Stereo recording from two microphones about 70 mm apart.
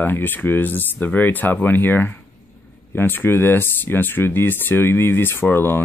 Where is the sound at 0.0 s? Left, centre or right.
Left.